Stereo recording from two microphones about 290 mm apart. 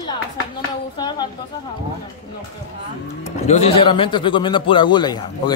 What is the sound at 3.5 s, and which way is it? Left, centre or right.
A man's voice, centre.